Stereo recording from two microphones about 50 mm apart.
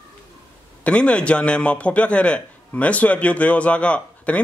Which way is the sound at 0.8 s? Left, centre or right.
Left.